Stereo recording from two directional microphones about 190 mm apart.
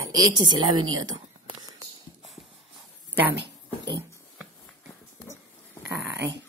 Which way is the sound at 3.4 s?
65° right (ahead or behind).